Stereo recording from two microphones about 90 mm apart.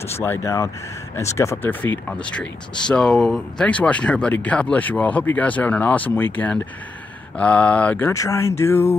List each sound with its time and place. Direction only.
0.0 s speech: 30° left (ahead or behind)
2.0 s speech: 15° left (ahead or behind)
8.1 s speech: 35° left (ahead or behind)